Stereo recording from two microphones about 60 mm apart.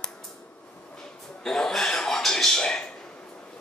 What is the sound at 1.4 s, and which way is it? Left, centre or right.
Chuckle, centre.